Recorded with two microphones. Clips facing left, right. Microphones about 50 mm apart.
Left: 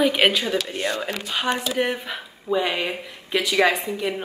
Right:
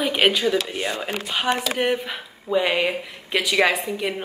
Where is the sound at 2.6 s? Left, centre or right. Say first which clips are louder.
Right 3 dB; right.